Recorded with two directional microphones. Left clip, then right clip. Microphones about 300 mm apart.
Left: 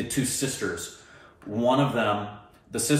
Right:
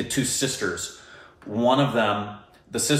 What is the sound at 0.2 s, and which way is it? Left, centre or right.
Speech, centre.